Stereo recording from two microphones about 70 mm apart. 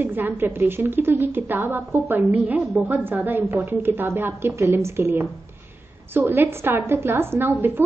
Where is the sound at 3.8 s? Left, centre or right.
Right.